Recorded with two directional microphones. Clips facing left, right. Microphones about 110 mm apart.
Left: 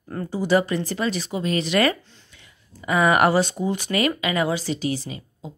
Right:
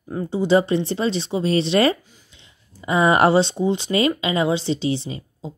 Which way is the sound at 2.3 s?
20° right (ahead or behind).